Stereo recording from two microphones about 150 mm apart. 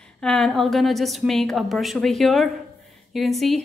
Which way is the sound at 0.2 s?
5° left (ahead or behind).